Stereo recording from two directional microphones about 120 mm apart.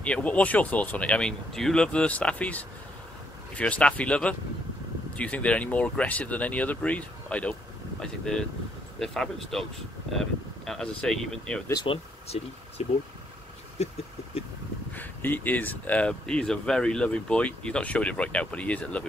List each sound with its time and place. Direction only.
0.0 s speech: 10° left (ahead or behind)
11.7 s speech: 45° left (ahead or behind)
12.8 s speech: 65° left (ahead or behind)
13.8 s a sound: 65° left (ahead or behind)
15.0 s speech: 15° left (ahead or behind)